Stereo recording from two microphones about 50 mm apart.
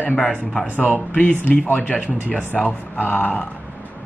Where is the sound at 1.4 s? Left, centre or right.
Left.